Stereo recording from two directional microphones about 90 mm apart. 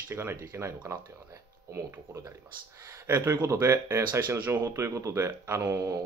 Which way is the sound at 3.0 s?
30° right (ahead or behind).